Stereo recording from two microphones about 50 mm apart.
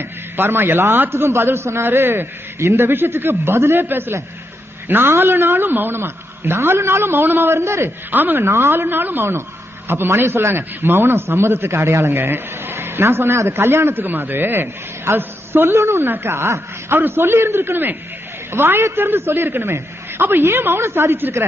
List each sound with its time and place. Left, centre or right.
0.4 s a man's voice: right
5.9 s a man's voice: right
7.5 s a man's voice: right
8.1 s speech: right
8.4 s a man's voice: right
11.2 s a man's voice: right
12.1 s a man's voice: right
15.8 s a man's voice: right
16.1 s a man's voice: right
16.9 s a man's voice: right